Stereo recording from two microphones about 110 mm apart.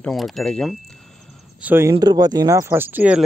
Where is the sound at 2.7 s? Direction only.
20° right (ahead or behind).